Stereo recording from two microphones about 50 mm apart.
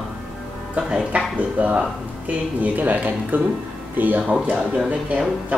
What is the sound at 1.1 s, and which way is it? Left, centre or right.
Speech, right.